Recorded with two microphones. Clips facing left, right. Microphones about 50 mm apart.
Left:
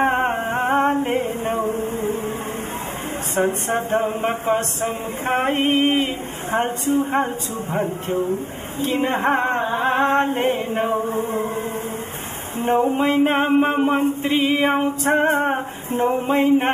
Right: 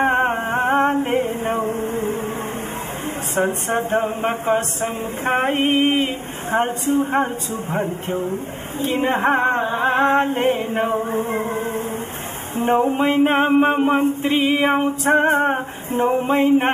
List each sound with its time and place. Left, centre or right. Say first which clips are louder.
0.0 s music: right 1 dB; centre
0.6 s a sound: right 1 dB; centre
1.6 s music: right 1 dB; right
3.4 s speech: even; right
3.7 s mantra: right 2 dB; centre
6.5 s music: right 2 dB; centre
7.2 s mantra: right 1 dB; centre
8.8 s a sound: right 1 dB; centre
10.0 s mantra: right 2 dB; centre
10.7 s music: right 1 dB; right
12.5 s speech: right 1 dB; right
13.0 s music: right 1 dB; centre